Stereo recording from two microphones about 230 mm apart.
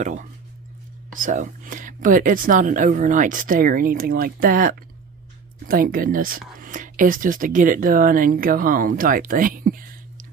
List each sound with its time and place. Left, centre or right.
0.0 s speech: right